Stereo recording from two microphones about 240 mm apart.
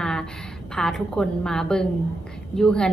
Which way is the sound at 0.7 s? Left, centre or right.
Centre.